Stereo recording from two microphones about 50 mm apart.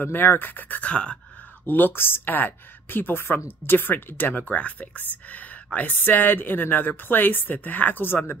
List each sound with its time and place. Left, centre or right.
0.0 s speech: left
0.8 s a sound: left
1.7 s speech: left